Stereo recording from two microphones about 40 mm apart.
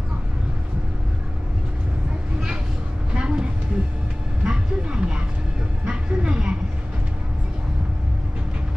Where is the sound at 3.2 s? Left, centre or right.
Centre.